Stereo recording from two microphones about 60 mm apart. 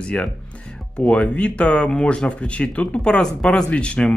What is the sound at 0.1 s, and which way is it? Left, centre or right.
Speech, left.